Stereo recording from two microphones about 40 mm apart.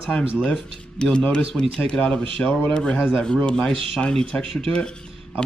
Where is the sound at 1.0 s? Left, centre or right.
Left.